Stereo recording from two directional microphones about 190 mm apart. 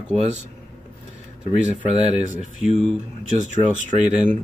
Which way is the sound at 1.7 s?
35° right (ahead or behind).